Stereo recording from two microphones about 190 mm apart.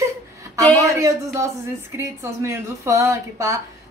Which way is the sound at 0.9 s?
15° right (ahead or behind).